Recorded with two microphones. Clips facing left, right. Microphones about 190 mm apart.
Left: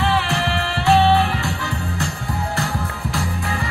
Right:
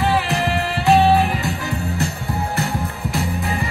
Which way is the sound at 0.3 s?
15° right (ahead or behind).